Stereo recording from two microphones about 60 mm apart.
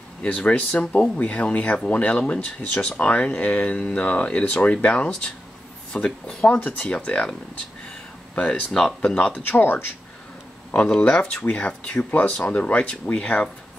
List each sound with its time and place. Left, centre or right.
0.5 s speech: left
8.4 s speech: left
9.4 s speech: left
10.7 s speech: left